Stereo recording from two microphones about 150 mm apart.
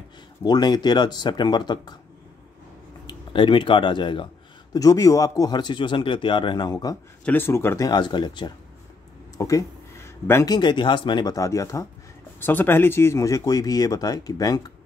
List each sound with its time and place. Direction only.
0.4 s speech: 30° left (ahead or behind)
3.1 s speech: 35° left (ahead or behind)
7.2 s speech: 15° left (ahead or behind)